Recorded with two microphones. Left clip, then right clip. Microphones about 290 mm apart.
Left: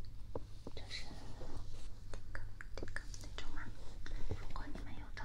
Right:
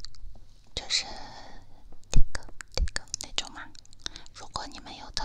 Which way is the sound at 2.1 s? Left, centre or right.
Right.